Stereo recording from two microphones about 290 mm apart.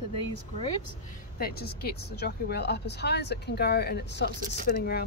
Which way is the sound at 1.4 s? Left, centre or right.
Left.